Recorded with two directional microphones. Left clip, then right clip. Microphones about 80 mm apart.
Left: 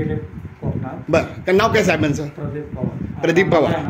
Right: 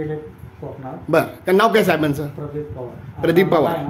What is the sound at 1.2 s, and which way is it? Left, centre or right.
A man's voice, centre.